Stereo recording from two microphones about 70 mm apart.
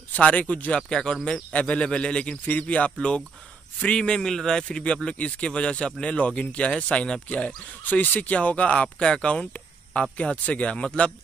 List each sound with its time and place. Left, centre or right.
0.1 s speech: centre
0.7 s speech: centre